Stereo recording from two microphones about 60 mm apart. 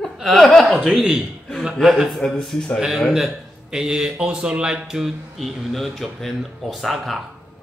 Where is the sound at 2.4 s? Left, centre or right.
Centre.